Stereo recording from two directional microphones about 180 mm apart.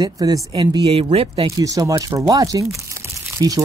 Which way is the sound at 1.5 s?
20° right (ahead or behind).